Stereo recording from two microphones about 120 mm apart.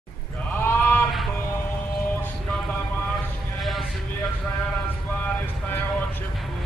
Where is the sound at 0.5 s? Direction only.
15° left (ahead or behind).